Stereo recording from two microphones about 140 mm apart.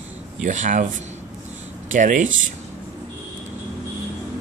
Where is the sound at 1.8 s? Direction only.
65° right (ahead or behind).